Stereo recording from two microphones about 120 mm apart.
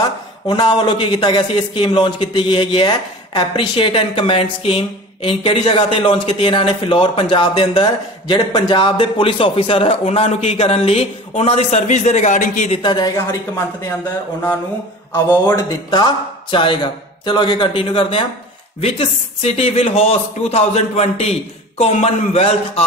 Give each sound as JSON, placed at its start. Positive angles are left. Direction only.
{"t": 0.5, "sound": "speech", "side_deg": 40}
{"t": 12.7, "sound": "a woman's voice", "side_deg": 40}
{"t": 15.1, "sound": "speech", "side_deg": 20}
{"t": 16.4, "sound": "speech", "side_deg": 45}
{"t": 18.8, "sound": "speech", "side_deg": 60}